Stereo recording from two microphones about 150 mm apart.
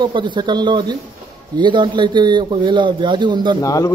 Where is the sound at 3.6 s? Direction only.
20° left (ahead or behind).